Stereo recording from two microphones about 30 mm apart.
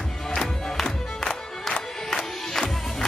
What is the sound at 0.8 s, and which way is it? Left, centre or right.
Music, left.